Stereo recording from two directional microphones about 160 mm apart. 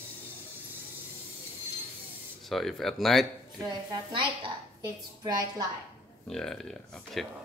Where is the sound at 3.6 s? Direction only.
30° right (ahead or behind).